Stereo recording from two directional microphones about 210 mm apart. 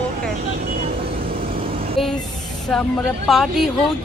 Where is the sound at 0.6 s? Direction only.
45° right (ahead or behind).